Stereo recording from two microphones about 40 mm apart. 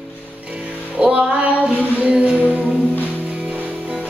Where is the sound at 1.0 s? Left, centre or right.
Right.